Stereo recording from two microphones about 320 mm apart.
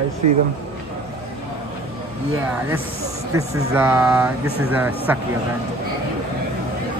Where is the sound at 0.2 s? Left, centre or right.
Right.